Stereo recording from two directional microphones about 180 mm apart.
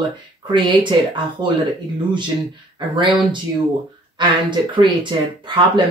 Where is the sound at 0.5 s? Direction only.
25° right (ahead or behind).